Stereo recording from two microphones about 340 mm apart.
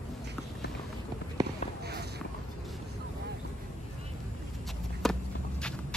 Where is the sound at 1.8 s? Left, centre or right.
Right.